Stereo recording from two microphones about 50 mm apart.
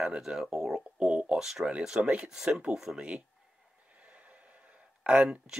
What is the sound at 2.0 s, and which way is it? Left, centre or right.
Speech, right.